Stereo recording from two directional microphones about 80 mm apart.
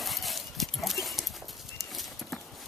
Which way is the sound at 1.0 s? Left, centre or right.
Centre.